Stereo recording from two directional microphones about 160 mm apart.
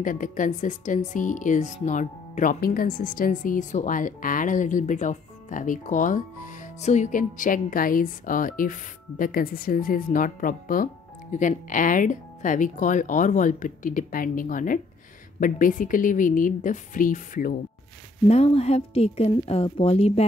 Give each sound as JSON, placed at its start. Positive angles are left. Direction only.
{"t": 0.0, "sound": "speech", "side_deg": 55}
{"t": 18.2, "sound": "speech", "side_deg": 35}